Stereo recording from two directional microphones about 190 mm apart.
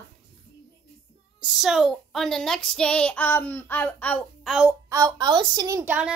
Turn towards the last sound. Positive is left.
turn(degrees=-10)  # may be behind; listen again after turning